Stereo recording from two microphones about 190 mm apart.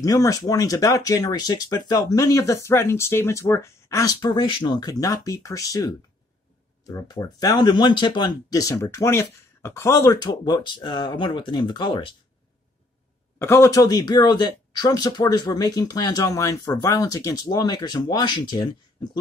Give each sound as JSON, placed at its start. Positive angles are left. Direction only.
{"t": 0.0, "sound": "speech", "side_deg": 20}
{"t": 13.4, "sound": "speech", "side_deg": 15}